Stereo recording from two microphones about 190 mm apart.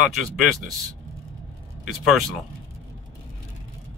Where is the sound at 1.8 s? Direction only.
Centre (ahead or behind).